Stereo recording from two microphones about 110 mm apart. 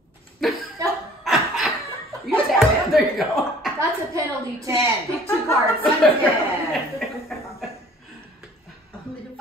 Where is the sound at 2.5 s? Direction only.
Centre (ahead or behind).